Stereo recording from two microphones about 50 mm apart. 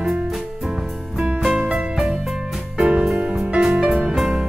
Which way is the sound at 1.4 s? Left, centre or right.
Centre.